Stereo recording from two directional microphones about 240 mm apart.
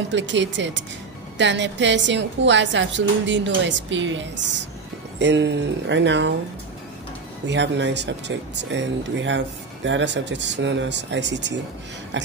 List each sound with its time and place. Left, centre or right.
0.1 s a woman's voice: right
7.4 s a woman's voice: right